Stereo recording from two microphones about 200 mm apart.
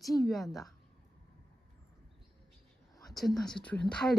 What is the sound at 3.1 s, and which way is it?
Speech, centre (ahead or behind).